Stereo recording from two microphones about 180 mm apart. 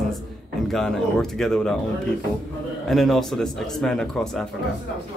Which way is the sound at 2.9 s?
Centre (ahead or behind).